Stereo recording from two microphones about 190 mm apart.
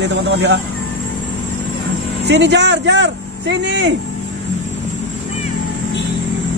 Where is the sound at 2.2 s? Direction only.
65° right (ahead or behind).